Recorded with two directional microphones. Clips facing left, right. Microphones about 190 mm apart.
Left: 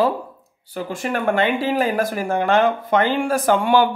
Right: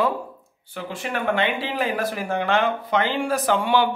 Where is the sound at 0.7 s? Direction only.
45° left (ahead or behind).